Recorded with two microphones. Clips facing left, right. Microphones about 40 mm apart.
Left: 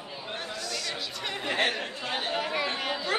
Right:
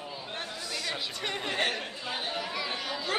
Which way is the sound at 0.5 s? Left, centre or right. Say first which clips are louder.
Left 1 dB; centre.